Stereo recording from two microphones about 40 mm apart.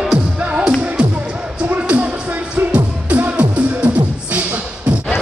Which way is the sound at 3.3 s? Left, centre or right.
Right.